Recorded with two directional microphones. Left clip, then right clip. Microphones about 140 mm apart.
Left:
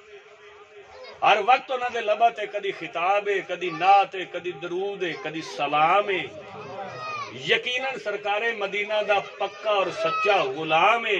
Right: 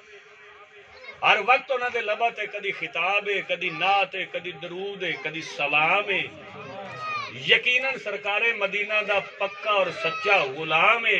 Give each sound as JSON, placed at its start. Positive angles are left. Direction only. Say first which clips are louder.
{"t": 1.2, "sound": "a man's voice", "louder": "left 1 dB", "side_deg": 35}
{"t": 7.3, "sound": "a man's voice", "louder": "right 4 dB", "side_deg": 35}